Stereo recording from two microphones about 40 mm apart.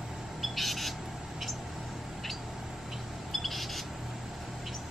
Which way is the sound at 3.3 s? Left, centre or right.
Centre.